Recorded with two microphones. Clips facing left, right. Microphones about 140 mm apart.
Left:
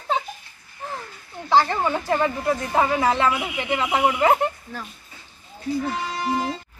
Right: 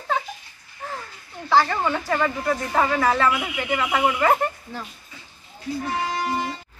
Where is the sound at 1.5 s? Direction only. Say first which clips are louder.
Left 1 dB; 15° left (ahead or behind).